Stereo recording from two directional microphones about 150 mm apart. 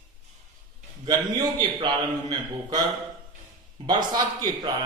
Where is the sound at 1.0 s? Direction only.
30° right (ahead or behind).